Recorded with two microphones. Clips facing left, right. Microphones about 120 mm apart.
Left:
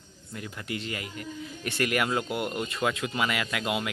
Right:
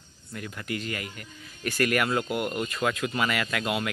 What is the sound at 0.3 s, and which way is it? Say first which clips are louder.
Speech: right 2 dB; 20° left (ahead or behind).